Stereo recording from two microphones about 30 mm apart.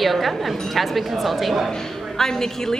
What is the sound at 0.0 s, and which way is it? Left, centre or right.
A woman's voice, centre.